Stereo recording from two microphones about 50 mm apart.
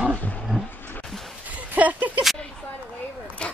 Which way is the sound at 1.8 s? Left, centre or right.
Right.